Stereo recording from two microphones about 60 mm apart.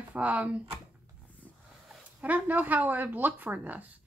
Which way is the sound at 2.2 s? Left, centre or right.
Right.